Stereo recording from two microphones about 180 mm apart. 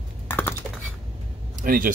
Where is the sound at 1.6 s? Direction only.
50° right (ahead or behind).